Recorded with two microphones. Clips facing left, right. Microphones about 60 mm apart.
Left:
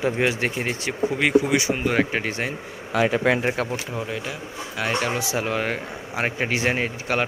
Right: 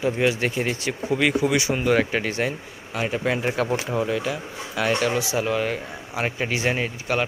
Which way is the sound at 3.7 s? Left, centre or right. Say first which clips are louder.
Right 5 dB; centre.